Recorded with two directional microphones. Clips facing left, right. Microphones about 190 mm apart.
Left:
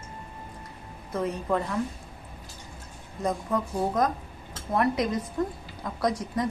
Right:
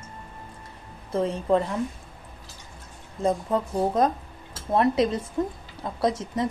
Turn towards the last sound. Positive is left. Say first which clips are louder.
# right 2 dB
turn(degrees=-25)  # may be behind; listen again after turning